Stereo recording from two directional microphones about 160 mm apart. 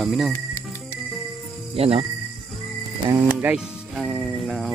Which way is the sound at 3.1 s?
20° right (ahead or behind).